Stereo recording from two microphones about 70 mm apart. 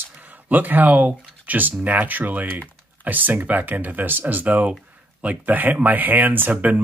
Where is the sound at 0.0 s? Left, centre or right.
Right.